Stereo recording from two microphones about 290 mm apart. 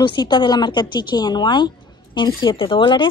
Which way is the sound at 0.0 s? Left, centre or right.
Centre.